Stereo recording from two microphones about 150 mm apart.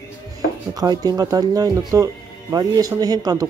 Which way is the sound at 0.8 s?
25° right (ahead or behind).